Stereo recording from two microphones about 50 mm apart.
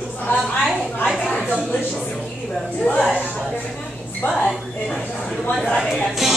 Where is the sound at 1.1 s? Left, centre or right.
Centre.